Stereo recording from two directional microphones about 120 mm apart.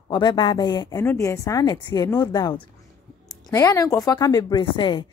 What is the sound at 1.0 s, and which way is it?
A woman's voice, 20° left (ahead or behind).